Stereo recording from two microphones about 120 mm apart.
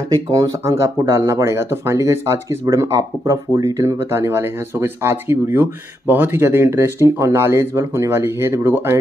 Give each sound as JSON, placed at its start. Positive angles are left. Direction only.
{"t": 0.1, "sound": "speech", "side_deg": -30}